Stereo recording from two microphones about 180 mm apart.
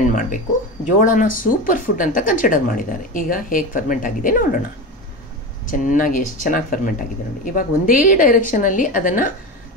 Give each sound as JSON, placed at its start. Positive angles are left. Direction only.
{"t": 0.0, "sound": "speech", "side_deg": 45}
{"t": 5.7, "sound": "speech", "side_deg": 45}